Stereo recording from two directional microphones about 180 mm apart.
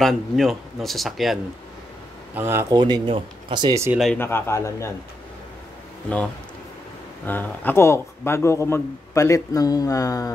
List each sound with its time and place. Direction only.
0.0 s speech: centre (ahead or behind)
2.3 s speech: 15° right (ahead or behind)
2.8 s speech: 25° right (ahead or behind)
4.0 s speech: 10° left (ahead or behind)
6.0 s speech: 5° left (ahead or behind)